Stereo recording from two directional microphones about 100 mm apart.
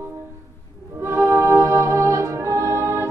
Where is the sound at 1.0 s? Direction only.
30° right (ahead or behind).